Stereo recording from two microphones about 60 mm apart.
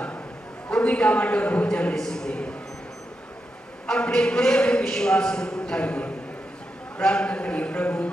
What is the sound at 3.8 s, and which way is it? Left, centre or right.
A man's voice, centre.